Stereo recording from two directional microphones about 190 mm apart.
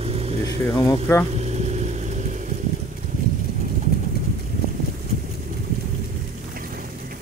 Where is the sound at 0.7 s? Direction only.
15° left (ahead or behind).